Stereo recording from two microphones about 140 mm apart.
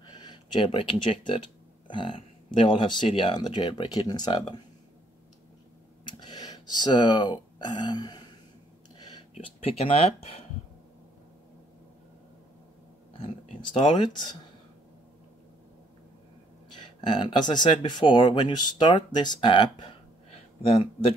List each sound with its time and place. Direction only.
0.1 s speech: 30° left (ahead or behind)
6.1 s speech: 30° left (ahead or behind)
9.3 s speech: 45° left (ahead or behind)
13.2 s speech: 35° left (ahead or behind)
16.7 s speech: 35° left (ahead or behind)